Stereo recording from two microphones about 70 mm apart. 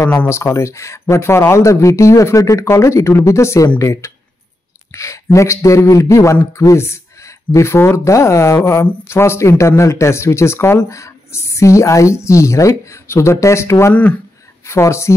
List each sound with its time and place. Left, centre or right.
0.3 s speech: left